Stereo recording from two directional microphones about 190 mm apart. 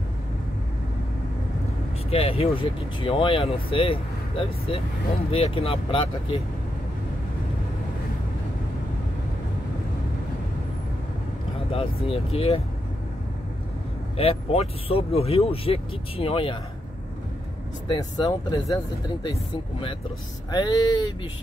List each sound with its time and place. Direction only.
2.0 s speech: 30° left (ahead or behind)
11.7 s speech: 30° left (ahead or behind)
14.1 s speech: 30° left (ahead or behind)
17.8 s speech: 20° left (ahead or behind)